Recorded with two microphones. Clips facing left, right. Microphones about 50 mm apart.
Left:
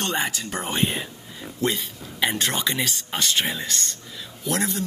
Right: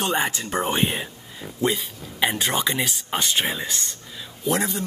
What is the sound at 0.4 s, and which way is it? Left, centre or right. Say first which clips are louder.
Speech: right 3 dB; centre.